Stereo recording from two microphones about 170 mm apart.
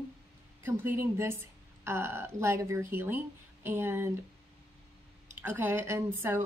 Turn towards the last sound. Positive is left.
turn(degrees=-15)  # may be behind; listen again after turning